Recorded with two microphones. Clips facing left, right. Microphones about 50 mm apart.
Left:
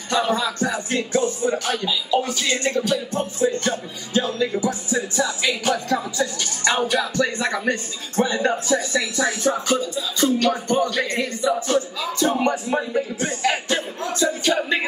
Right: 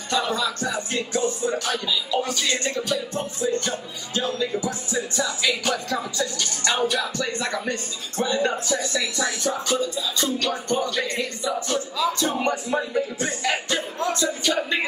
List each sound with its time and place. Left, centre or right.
0.1 s speech: left
5.1 s speech: left
10.8 s music: left
12.4 s speech: centre
13.5 s speech: left
14.5 s speech: centre